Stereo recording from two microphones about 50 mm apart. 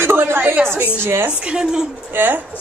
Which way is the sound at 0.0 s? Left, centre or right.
Right.